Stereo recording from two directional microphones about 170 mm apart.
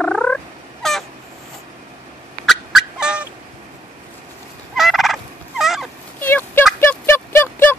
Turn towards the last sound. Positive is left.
turn(degrees=15)  # may be behind; listen again after turning